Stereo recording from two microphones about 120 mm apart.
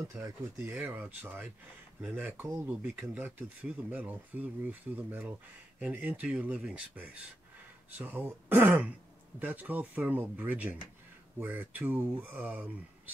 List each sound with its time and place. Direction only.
0.1 s speech: 25° right (ahead or behind)
0.7 s speech: 15° right (ahead or behind)